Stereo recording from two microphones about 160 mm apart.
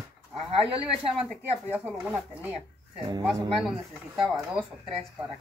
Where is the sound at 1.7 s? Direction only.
10° right (ahead or behind).